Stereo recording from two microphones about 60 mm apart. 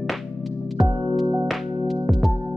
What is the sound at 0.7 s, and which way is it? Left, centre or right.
Music, centre.